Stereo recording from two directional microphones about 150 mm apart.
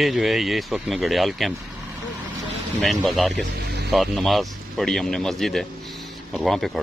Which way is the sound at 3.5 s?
90° right.